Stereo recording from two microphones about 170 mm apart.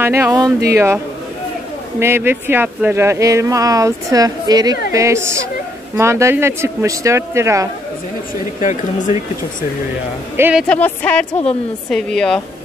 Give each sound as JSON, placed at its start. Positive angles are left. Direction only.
{"t": 0.0, "sound": "speech", "side_deg": -15}
{"t": 8.5, "sound": "speech", "side_deg": 45}
{"t": 10.3, "sound": "speech", "side_deg": -10}
{"t": 10.7, "sound": "a woman's voice", "side_deg": 10}